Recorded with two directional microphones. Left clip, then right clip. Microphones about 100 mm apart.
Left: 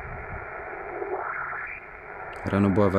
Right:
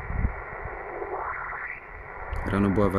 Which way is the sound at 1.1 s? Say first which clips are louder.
Left 1 dB; 30° right (ahead or behind).